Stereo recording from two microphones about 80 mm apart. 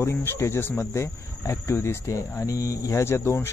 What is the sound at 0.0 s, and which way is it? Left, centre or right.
Speech, left.